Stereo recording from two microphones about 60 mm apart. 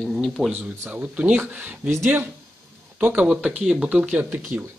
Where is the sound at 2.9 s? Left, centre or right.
Right.